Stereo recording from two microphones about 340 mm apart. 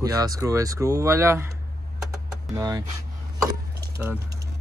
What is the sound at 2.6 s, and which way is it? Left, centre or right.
Speech, centre.